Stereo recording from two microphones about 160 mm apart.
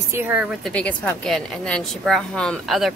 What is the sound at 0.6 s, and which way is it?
Speech, 10° left (ahead or behind).